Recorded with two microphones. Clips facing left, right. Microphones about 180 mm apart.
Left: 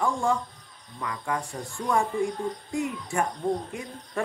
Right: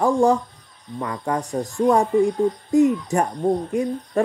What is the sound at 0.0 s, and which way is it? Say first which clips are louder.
Speech: right 8 dB; 40° right (ahead or behind).